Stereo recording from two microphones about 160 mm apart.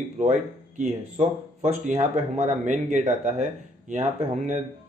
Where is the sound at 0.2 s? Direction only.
50° right (ahead or behind).